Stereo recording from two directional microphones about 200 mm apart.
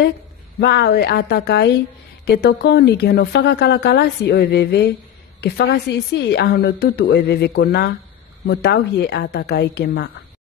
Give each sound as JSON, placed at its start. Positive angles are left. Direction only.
{"t": 0.6, "sound": "speech", "side_deg": 55}